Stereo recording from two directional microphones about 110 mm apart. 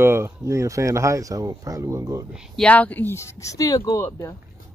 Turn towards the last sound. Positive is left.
turn(degrees=30)  # may be behind; listen again after turning